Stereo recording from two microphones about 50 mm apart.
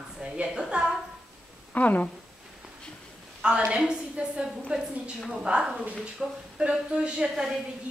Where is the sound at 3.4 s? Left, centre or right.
Right.